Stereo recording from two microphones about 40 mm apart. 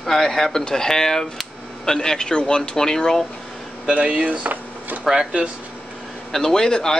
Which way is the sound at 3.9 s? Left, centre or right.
Right.